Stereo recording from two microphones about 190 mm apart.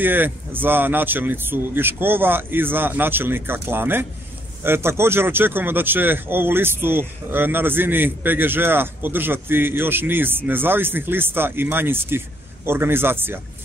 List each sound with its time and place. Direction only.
0.0 s a man's voice: 10° right (ahead or behind)